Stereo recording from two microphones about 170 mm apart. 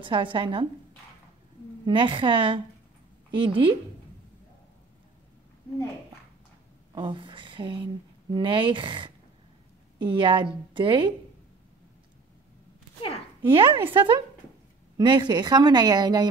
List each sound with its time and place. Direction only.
0.0 s a woman's voice: 30° right (ahead or behind)
1.9 s a woman's voice: 30° right (ahead or behind)
6.9 s a woman's voice: 30° right (ahead or behind)
13.5 s a woman's voice: 30° right (ahead or behind)